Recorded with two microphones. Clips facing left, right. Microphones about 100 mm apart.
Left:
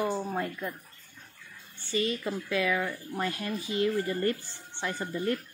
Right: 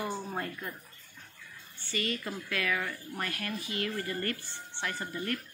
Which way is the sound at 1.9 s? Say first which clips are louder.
Left 5 dB; 20° left (ahead or behind).